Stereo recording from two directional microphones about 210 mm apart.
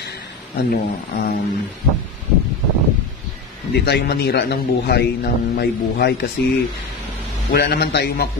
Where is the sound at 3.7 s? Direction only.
50° left (ahead or behind).